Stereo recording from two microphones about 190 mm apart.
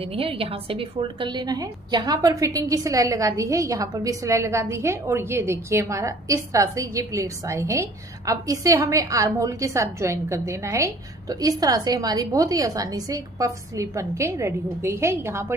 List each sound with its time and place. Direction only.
0.0 s a woman's voice: 30° right (ahead or behind); by 15.5 s 15° right (ahead or behind)